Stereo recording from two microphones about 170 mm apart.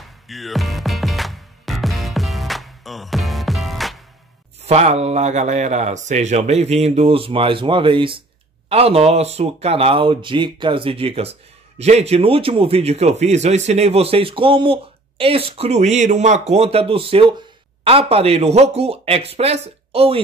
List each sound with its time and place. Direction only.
0.0 s music: centre (ahead or behind)
4.6 s speech: 40° right (ahead or behind)